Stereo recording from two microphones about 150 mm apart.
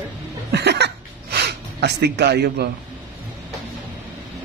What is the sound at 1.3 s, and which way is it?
Gasp, 90° right.